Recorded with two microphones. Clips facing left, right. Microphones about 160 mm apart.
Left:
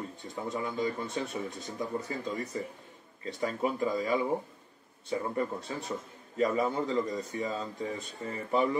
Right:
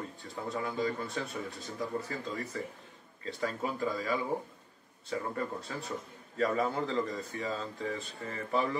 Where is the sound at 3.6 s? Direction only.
20° left (ahead or behind).